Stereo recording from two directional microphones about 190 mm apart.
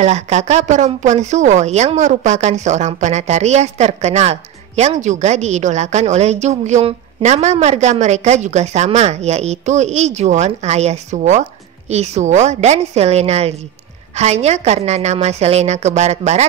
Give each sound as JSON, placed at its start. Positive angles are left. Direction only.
{"t": 0.0, "sound": "a woman's voice", "side_deg": -35}